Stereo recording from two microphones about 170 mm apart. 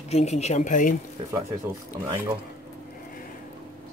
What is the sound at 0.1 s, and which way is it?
Speech, 40° left (ahead or behind).